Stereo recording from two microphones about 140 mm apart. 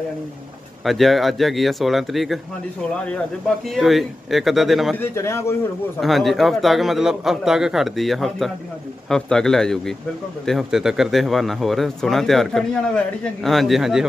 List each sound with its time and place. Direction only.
0.8 s speech: centre (ahead or behind)
4.9 s a man's voice: 20° left (ahead or behind)
5.9 s speech: centre (ahead or behind)